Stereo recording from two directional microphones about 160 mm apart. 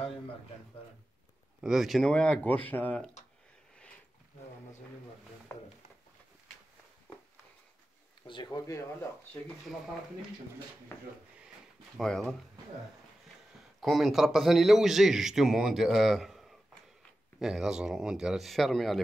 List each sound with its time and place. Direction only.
1.6 s a man's voice: 5° right (ahead or behind)
8.5 s speech: 20° left (ahead or behind)
12.0 s a man's voice: 5° left (ahead or behind)
13.7 s a man's voice: centre (ahead or behind)